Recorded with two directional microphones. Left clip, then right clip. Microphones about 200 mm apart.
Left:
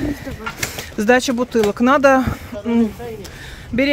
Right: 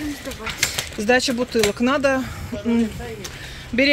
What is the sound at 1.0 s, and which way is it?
Speech, 20° left (ahead or behind).